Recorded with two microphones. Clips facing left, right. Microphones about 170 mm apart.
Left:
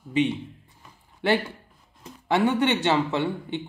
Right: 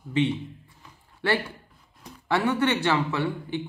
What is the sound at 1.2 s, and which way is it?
Speech, 20° left (ahead or behind).